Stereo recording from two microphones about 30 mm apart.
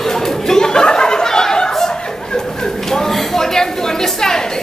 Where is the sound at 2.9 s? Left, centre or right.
Centre.